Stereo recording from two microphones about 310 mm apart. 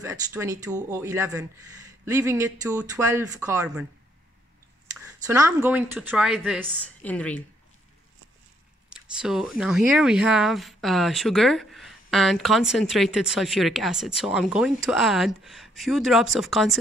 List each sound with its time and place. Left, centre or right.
0.0 s speech: centre
5.2 s speech: centre
8.9 s speech: centre